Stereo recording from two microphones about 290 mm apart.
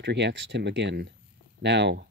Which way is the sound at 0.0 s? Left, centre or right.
Right.